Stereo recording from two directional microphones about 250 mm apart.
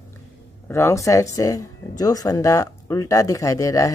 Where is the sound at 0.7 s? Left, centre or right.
Centre.